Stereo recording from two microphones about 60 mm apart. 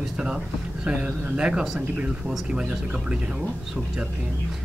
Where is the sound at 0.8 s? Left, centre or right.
Centre.